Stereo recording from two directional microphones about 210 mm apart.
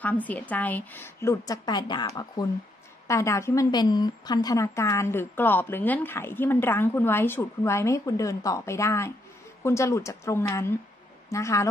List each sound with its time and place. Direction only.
0.0 s a woman's voice: 5° left (ahead or behind)